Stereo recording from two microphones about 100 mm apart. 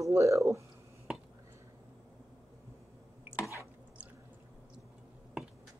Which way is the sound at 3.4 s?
30° left (ahead or behind).